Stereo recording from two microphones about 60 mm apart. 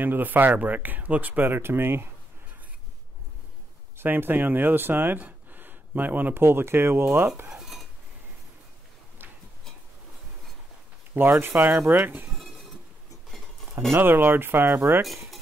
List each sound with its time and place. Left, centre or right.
0.0 s speech: right
4.0 s speech: right
11.1 s speech: right
13.9 s speech: right